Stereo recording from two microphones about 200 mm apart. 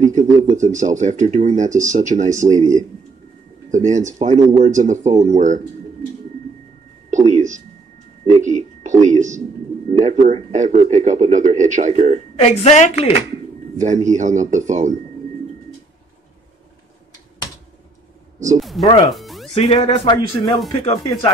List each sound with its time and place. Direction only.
0.0 s speech: 40° right (ahead or behind)
7.1 s a sound: 40° right (ahead or behind)
9.8 s speech: 35° right (ahead or behind)
12.4 s a woman's voice: 35° left (ahead or behind)
13.7 s speech: 40° right (ahead or behind)
18.6 s speech: centre (ahead or behind)
19.0 s music: centre (ahead or behind)
19.5 s speech: 30° left (ahead or behind)